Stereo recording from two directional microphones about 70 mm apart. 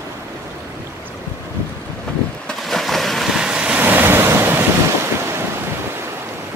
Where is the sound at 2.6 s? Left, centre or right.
Centre.